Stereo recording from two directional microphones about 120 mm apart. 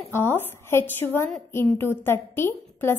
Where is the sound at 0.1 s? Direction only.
20° left (ahead or behind).